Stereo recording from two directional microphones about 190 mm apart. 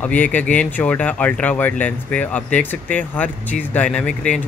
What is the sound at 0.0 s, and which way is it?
Speech, 10° left (ahead or behind).